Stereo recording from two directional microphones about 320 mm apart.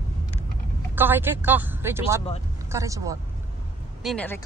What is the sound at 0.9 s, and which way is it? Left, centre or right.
Speech, centre.